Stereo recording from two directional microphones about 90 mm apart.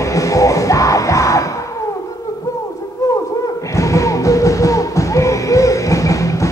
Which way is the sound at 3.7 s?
35° left (ahead or behind).